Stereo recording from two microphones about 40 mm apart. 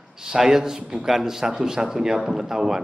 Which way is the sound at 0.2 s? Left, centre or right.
Centre.